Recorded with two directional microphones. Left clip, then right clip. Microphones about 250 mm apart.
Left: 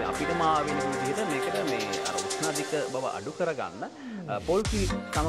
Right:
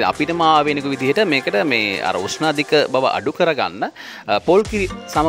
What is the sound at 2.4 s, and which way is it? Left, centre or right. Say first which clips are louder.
Speech: right 18 dB; right.